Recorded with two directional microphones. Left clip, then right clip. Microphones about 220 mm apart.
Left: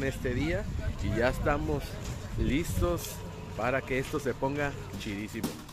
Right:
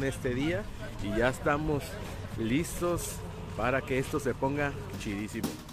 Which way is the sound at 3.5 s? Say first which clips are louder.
Even; 5° right (ahead or behind).